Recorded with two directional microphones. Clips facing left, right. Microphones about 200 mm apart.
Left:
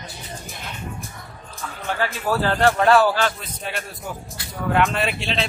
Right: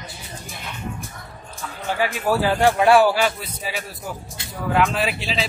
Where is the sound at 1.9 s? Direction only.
10° right (ahead or behind).